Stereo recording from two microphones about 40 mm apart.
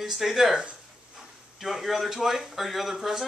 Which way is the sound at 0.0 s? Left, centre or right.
Centre.